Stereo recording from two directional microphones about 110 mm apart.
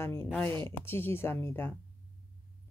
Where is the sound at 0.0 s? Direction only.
20° left (ahead or behind).